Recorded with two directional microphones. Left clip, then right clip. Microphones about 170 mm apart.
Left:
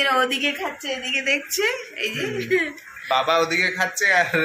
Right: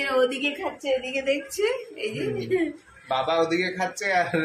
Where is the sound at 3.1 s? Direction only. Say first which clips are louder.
Left 4 dB; 10° left (ahead or behind).